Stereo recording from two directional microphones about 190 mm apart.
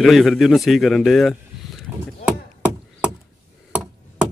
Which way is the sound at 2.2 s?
5° right (ahead or behind).